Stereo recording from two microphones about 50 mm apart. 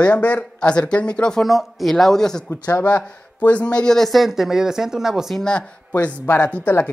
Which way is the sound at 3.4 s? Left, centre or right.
Left.